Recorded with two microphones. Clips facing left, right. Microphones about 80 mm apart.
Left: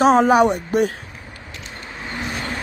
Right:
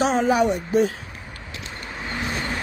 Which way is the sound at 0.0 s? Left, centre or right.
Left.